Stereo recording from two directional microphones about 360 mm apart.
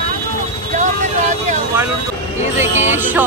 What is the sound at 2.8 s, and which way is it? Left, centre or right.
Music, centre.